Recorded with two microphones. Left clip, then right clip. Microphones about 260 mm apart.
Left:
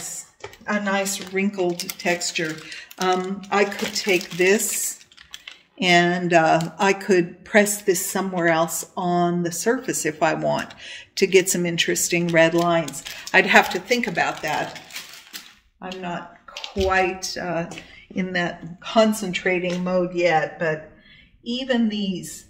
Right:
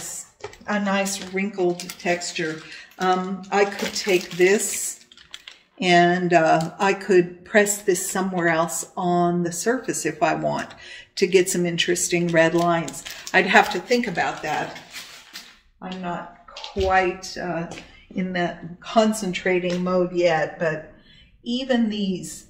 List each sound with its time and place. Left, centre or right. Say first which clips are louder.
0.9 s speech: left 1 dB; left
5.8 s speech: right 1 dB; left
16.7 s speech: right 1 dB; left
19.4 s a man's voice: right 1 dB; centre
21.5 s a man's voice: even; centre